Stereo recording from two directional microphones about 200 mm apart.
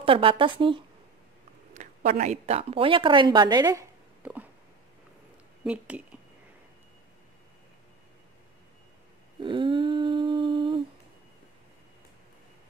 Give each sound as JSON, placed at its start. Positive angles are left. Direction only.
{"t": 0.0, "sound": "a woman's voice", "side_deg": -25}
{"t": 1.7, "sound": "a woman's voice", "side_deg": -35}
{"t": 4.2, "sound": "a sound", "side_deg": -10}
{"t": 5.6, "sound": "speech", "side_deg": -5}
{"t": 9.4, "sound": "humming", "side_deg": -25}